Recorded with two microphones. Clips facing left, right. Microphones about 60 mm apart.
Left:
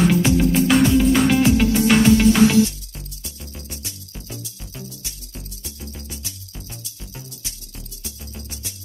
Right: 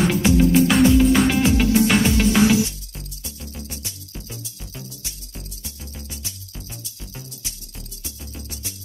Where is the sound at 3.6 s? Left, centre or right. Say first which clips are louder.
Even; right.